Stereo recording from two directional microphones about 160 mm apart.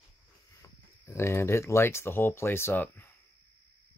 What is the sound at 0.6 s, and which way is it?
Speech, 15° left (ahead or behind).